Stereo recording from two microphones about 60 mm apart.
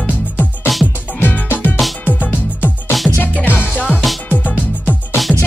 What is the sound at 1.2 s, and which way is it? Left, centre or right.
Music, left.